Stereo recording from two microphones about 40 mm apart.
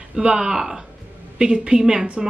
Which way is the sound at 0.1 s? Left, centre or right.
Centre.